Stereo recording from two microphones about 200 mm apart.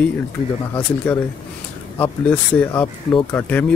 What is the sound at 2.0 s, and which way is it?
Speech, 5° left (ahead or behind).